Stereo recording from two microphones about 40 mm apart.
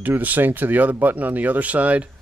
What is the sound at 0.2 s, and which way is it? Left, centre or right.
Speech, right.